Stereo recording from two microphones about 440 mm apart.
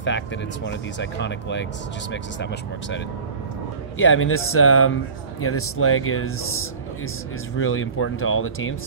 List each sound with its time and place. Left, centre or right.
0.7 s speech: left
4.0 s speech: left